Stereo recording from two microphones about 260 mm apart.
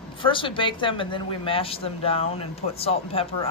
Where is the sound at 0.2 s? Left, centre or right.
Centre.